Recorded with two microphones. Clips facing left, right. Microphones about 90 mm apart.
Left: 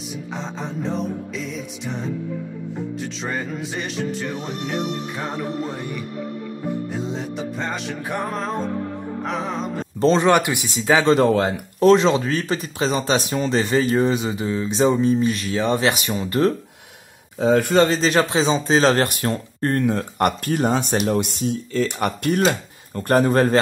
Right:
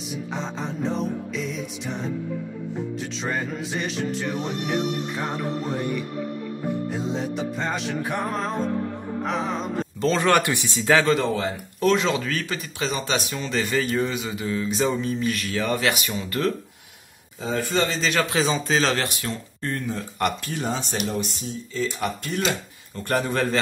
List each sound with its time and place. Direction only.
0.4 s music: centre (ahead or behind)
3.2 s music: centre (ahead or behind)
6.9 s music: centre (ahead or behind)
9.9 s speech: 35° left (ahead or behind)
10.2 s speech: 15° left (ahead or behind)
11.2 s speech: 60° left (ahead or behind)
11.8 s speech: 35° left (ahead or behind)
17.4 s speech: 65° left (ahead or behind)
17.8 s speech: 35° left (ahead or behind); by 21.0 s 55° left (ahead or behind)
21.1 s speech: 65° left (ahead or behind)
22.4 s speech: 45° left (ahead or behind)